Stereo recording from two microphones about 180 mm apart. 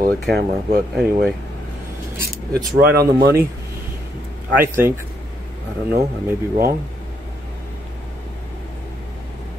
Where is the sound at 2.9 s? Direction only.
60° right (ahead or behind).